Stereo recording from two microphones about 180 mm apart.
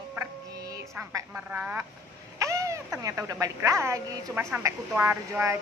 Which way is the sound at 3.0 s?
20° right (ahead or behind).